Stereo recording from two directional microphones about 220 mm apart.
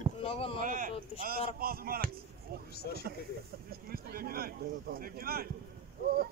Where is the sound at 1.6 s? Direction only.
45° right (ahead or behind).